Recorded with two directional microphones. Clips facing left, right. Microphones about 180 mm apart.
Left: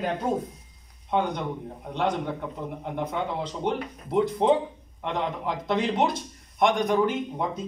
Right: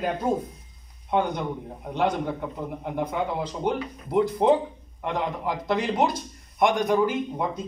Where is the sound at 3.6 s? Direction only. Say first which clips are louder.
Right 1 dB; 5° right (ahead or behind).